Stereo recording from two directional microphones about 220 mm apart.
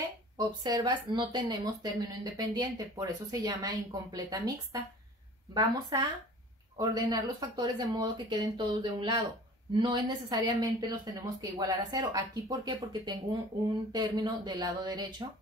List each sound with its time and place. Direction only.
0.4 s speech: 20° right (ahead or behind)